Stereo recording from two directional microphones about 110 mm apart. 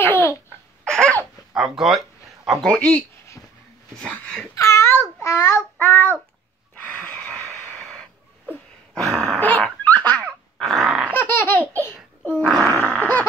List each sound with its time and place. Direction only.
0.0 s laughter: 20° left (ahead or behind)
0.8 s laughter: 5° left (ahead or behind)
1.5 s a sound: 5° right (ahead or behind)
2.6 s speech: 10° left (ahead or behind)
4.6 s babbling: 25° left (ahead or behind)
5.2 s a child's voice: 25° left (ahead or behind)
5.8 s child singing: 15° left (ahead or behind)
6.8 s a sound: 15° left (ahead or behind)
9.1 s dog: 5° right (ahead or behind)
9.4 s dog: 15° left (ahead or behind)
11.1 s laughter: 20° left (ahead or behind)
12.4 s grunt: 5° left (ahead or behind)
12.7 s a sound: 15° left (ahead or behind)